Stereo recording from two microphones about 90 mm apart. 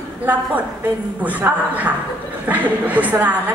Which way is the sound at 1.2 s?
15° right (ahead or behind).